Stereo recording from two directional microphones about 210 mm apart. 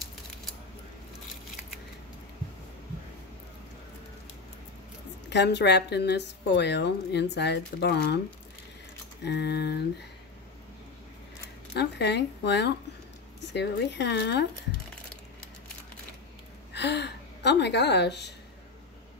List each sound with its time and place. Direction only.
5.3 s a woman's voice: 55° left (ahead or behind)
9.2 s a woman's voice: 50° left (ahead or behind)
11.7 s a woman's voice: 55° left (ahead or behind)
16.7 s a sound: 55° left (ahead or behind)